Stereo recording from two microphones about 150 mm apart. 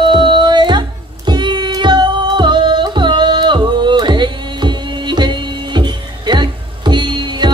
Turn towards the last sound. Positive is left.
turn(degrees=-30)  # may be behind; listen again after turning